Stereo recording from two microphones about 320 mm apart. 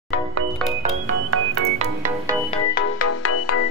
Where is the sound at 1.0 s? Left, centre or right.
Right.